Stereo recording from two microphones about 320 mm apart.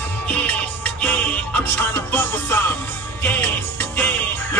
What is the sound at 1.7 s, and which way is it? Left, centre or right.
Music, centre.